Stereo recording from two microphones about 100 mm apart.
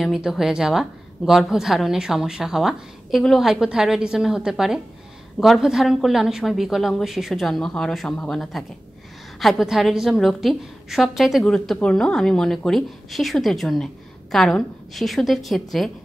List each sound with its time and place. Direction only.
0.0 s a woman's voice: centre (ahead or behind)